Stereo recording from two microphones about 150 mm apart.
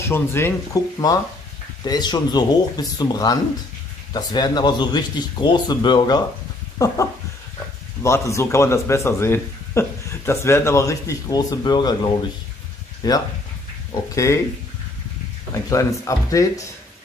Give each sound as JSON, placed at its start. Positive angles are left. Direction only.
{"t": 0.0, "sound": "speech", "side_deg": 15}
{"t": 8.0, "sound": "speech", "side_deg": 20}
{"t": 15.5, "sound": "speech", "side_deg": 20}